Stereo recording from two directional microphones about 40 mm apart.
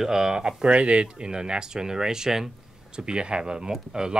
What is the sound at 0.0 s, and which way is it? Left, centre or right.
A man's voice, centre.